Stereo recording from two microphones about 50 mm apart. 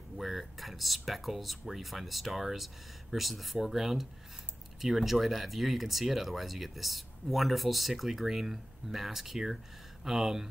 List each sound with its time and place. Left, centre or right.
0.2 s speech: centre